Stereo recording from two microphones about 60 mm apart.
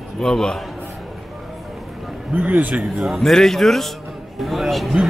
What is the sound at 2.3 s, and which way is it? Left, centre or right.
Speech, right.